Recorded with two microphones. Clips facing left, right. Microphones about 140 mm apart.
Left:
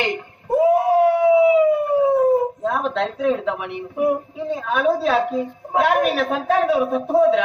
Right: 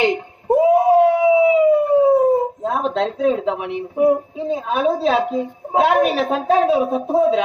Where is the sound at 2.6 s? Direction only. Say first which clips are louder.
Right 2 dB; 30° right (ahead or behind).